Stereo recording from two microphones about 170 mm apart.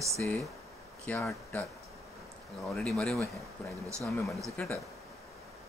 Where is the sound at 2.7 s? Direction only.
5° left (ahead or behind).